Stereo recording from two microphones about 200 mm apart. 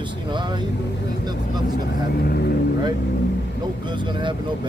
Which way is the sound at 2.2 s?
50° left (ahead or behind).